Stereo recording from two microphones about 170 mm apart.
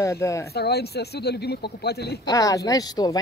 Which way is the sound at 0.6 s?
70° left (ahead or behind).